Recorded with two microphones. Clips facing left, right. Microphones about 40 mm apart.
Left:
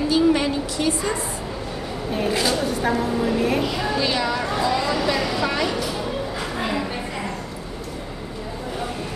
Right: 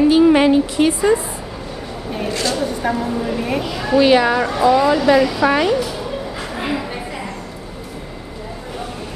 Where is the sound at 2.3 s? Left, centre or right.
Centre.